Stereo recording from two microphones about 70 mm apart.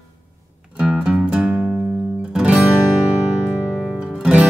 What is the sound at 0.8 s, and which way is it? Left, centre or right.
Music, centre.